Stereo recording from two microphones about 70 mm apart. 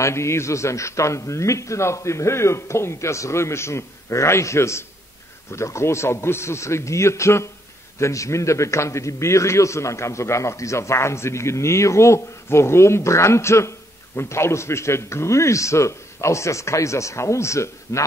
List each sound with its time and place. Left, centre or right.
0.0 s a man's voice: left